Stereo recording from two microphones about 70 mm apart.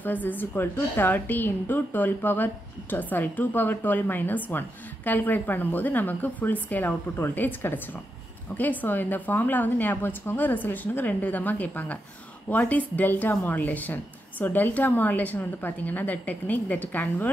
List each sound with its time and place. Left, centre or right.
0.0 s a woman's voice: left